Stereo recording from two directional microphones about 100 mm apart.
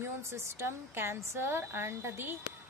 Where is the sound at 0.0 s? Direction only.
25° right (ahead or behind).